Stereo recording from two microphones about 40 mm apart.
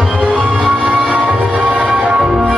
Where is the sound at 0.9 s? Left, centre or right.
Centre.